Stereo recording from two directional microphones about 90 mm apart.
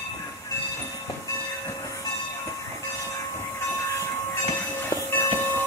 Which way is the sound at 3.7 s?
30° left (ahead or behind).